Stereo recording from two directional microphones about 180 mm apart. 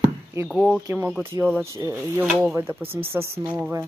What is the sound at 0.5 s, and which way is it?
Speech, 5° left (ahead or behind).